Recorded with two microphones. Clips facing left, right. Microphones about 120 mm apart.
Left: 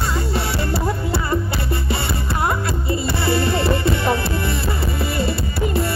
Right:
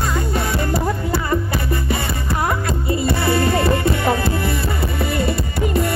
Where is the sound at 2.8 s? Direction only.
30° left (ahead or behind).